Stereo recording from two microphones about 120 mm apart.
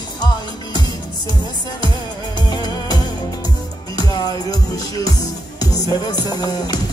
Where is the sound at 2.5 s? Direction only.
35° left (ahead or behind).